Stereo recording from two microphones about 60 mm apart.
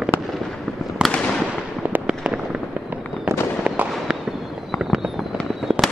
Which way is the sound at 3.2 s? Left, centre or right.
Right.